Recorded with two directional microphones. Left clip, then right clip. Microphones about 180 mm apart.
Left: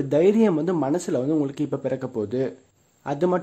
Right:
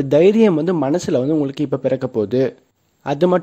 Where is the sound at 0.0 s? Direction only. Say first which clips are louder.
Right 6 dB; 35° right (ahead or behind).